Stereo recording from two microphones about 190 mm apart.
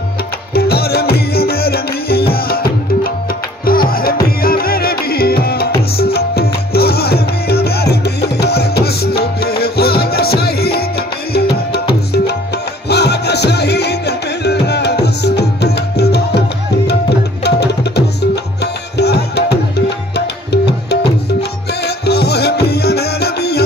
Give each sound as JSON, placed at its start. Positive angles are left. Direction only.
{"t": 0.6, "sound": "music", "side_deg": 55}
{"t": 17.4, "sound": "tabla", "side_deg": 60}
{"t": 21.4, "sound": "music", "side_deg": 60}